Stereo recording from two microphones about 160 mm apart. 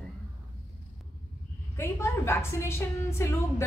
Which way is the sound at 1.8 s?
15° left (ahead or behind).